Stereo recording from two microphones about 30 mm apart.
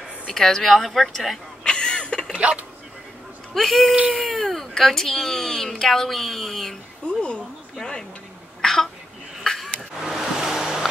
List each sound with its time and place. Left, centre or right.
0.3 s speech: centre
1.6 s a sound: left
2.3 s speech: right
3.5 s speech: centre
7.1 s speech: left
8.5 s throat clearing: centre
9.5 s a sound: left
9.9 s a sound: centre
10.4 s vehicle: centre